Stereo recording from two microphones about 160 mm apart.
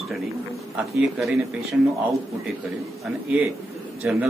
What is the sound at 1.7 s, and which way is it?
Speech, 10° right (ahead or behind).